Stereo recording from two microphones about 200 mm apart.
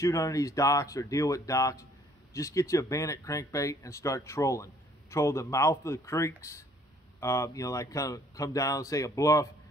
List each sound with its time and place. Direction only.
0.0 s speech: 15° left (ahead or behind)